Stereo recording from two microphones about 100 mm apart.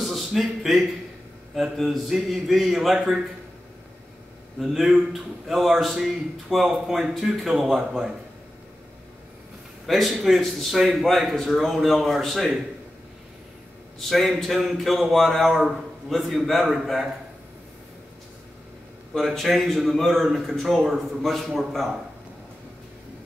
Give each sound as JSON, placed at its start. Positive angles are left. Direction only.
{"t": 0.0, "sound": "a sound", "side_deg": 0}
{"t": 1.5, "sound": "a man's voice", "side_deg": 0}
{"t": 4.6, "sound": "a man's voice", "side_deg": -5}
{"t": 9.8, "sound": "a man's voice", "side_deg": 0}
{"t": 13.9, "sound": "a man's voice", "side_deg": 0}
{"t": 19.1, "sound": "a man's voice", "side_deg": 0}